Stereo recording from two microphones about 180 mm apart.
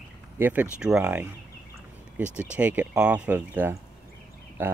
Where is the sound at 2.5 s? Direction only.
10° right (ahead or behind).